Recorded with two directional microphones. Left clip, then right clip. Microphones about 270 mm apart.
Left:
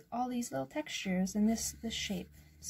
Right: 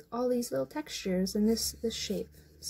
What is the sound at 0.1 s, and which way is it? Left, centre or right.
Speech, left.